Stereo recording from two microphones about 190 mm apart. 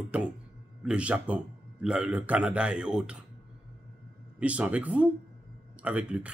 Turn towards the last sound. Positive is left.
turn(degrees=-5)  # may be behind; listen again after turning